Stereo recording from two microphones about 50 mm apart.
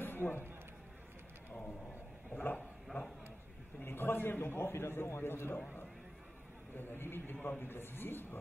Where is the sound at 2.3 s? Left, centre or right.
Left.